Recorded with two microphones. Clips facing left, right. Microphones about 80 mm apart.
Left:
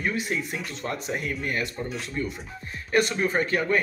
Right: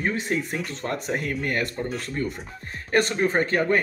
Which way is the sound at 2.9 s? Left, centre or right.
Right.